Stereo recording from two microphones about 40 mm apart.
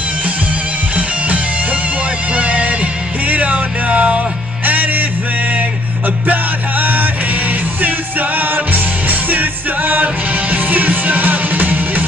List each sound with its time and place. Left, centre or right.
0.9 s music: right
6.2 s music: right